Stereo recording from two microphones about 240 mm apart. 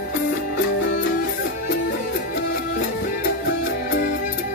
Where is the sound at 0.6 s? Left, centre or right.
Left.